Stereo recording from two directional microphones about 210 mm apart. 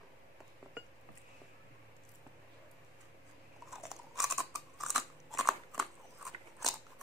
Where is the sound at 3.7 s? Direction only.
Centre (ahead or behind).